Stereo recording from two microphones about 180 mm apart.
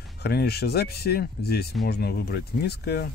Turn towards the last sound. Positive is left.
turn(degrees=65)  # may be behind; listen again after turning